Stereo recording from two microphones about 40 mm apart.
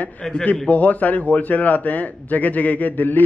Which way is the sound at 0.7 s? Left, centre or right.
Left.